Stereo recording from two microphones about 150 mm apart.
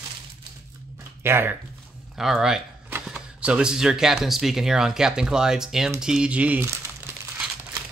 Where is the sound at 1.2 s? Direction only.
15° right (ahead or behind).